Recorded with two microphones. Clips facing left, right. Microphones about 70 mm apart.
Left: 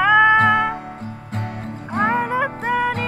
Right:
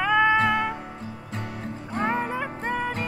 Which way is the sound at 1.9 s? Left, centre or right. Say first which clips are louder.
Left 7 dB; left.